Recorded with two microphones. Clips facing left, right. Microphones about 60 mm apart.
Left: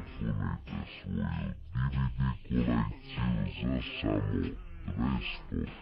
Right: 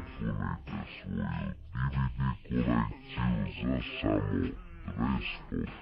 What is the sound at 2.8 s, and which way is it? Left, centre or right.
Music, centre.